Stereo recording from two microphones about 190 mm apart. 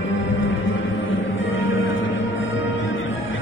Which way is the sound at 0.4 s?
90° left.